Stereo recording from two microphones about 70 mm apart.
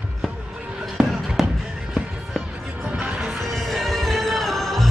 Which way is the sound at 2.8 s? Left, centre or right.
Centre.